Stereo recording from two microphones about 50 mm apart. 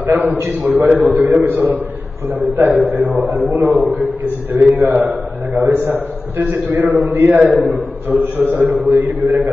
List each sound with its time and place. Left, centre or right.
0.0 s a man's voice: right